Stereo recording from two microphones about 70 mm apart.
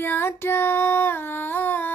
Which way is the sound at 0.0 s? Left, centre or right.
Left.